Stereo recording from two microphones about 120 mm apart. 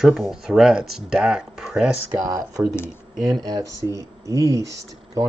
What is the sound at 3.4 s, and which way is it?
Speech, 30° right (ahead or behind).